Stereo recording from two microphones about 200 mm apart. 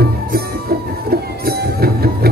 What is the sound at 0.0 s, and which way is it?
Music, 50° right (ahead or behind).